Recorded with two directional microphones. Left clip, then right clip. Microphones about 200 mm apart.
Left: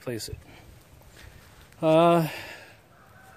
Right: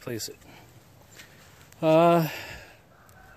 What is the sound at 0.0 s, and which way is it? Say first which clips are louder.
Speech: left 1 dB; centre (ahead or behind).